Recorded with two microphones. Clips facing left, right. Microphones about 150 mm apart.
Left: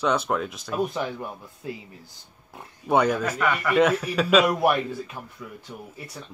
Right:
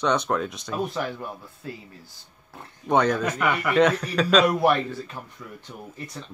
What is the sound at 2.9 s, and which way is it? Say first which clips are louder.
Speech: even; 10° left (ahead or behind).